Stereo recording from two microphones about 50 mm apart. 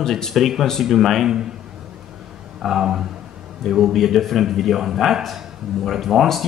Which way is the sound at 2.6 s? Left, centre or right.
Centre.